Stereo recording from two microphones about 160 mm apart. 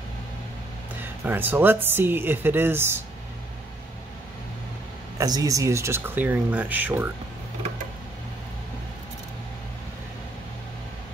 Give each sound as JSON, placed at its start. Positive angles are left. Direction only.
{"t": 0.9, "sound": "speech", "side_deg": -10}
{"t": 5.1, "sound": "speech", "side_deg": -20}